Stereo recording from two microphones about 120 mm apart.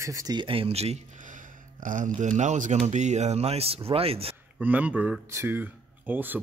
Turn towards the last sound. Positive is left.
turn(degrees=-15)  # may be behind; listen again after turning